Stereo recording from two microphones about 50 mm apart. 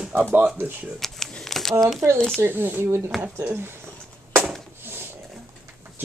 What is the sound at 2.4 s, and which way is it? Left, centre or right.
Speech, right.